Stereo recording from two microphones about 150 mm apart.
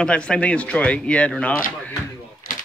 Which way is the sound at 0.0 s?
5° left (ahead or behind).